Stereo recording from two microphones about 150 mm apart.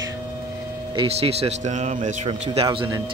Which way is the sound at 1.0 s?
45° right (ahead or behind).